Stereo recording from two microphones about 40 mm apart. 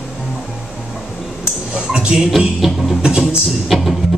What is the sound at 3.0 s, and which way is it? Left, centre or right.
Speech, right.